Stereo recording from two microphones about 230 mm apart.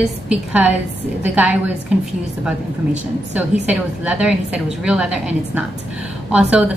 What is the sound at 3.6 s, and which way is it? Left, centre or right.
A woman's voice, centre.